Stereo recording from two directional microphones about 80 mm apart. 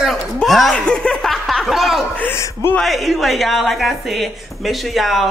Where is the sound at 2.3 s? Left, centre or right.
Left.